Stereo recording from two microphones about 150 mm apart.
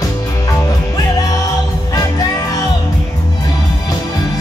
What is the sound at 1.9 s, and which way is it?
Music, 25° left (ahead or behind).